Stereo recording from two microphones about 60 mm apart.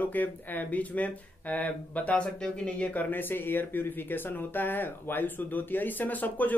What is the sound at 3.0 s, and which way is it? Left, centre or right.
Speech, left.